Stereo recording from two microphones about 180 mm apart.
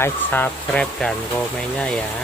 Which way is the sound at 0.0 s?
10° left (ahead or behind).